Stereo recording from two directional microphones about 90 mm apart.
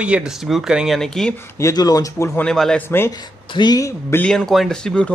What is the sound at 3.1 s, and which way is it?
Speech, 50° left (ahead or behind).